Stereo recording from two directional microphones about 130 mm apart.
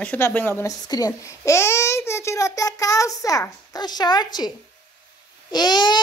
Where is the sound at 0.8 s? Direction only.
30° left (ahead or behind).